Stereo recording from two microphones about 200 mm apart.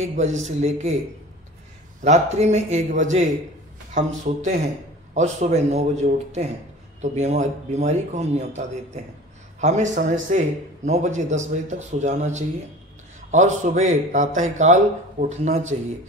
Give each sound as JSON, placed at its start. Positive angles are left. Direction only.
{"t": 0.0, "sound": "speech", "side_deg": -35}
{"t": 2.0, "sound": "speech", "side_deg": -35}